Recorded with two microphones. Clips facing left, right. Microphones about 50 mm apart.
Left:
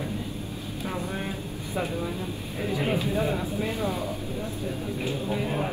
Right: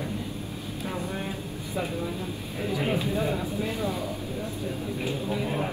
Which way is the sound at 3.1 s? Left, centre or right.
Centre.